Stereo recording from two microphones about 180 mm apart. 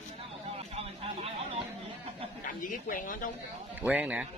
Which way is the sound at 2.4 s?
50° left (ahead or behind).